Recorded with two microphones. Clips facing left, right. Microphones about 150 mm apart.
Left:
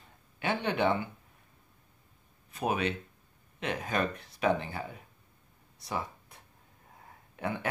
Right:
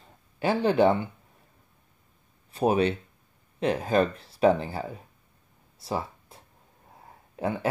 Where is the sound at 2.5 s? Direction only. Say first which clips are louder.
Right 8 dB; 30° right (ahead or behind).